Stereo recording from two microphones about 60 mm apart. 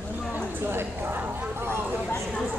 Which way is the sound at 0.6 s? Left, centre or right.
Right.